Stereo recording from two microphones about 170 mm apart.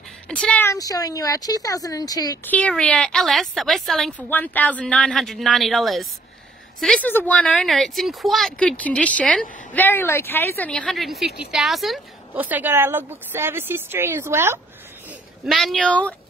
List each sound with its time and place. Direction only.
0.3 s speech: 5° left (ahead or behind)
2.4 s speech: 10° left (ahead or behind); by 14.6 s 15° right (ahead or behind)
15.0 s speech: centre (ahead or behind)